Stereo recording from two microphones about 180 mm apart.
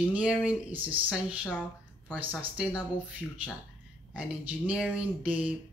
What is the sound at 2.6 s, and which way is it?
Speech, 5° right (ahead or behind).